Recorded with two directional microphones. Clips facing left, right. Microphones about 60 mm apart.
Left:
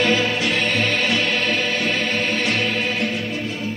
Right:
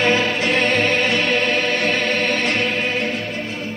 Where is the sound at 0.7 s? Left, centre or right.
Right.